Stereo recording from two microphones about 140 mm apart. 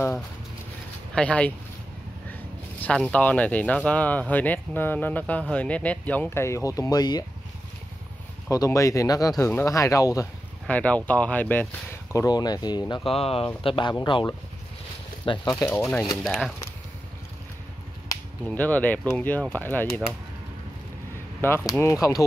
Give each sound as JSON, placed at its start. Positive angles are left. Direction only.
{"t": 1.1, "sound": "speech", "side_deg": 10}
{"t": 2.8, "sound": "speech", "side_deg": 10}
{"t": 8.5, "sound": "speech", "side_deg": 25}
{"t": 10.7, "sound": "speech", "side_deg": 10}
{"t": 15.7, "sound": "speech", "side_deg": 5}
{"t": 18.5, "sound": "speech", "side_deg": 10}
{"t": 21.6, "sound": "speech", "side_deg": 20}